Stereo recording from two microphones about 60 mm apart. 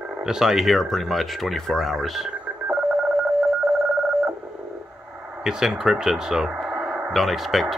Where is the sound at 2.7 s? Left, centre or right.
Right.